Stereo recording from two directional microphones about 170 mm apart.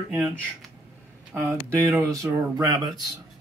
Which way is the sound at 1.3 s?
10° right (ahead or behind).